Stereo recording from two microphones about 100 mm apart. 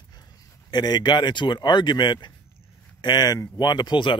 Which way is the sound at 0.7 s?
45° left (ahead or behind).